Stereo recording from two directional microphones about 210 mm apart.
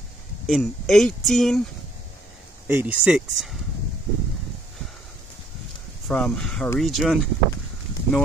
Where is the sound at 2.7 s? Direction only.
10° right (ahead or behind).